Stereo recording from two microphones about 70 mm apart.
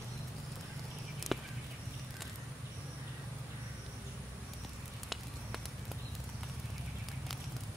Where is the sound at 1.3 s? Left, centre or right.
Centre.